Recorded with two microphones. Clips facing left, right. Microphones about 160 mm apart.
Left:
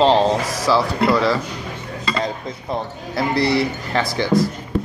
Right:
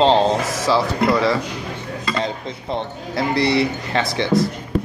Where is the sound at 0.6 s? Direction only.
25° right (ahead or behind).